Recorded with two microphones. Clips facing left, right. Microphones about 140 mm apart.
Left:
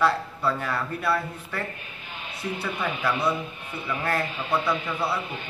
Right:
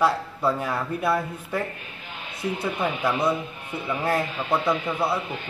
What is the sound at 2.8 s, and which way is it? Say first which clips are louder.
Speech: right 2 dB; 20° right (ahead or behind).